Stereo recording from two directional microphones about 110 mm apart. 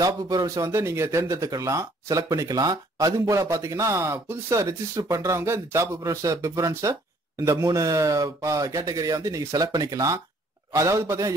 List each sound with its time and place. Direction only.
0.0 s speech: 35° right (ahead or behind)
0.7 s speech: 25° right (ahead or behind)